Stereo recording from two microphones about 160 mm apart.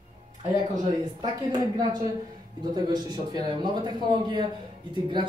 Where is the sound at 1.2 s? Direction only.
25° right (ahead or behind).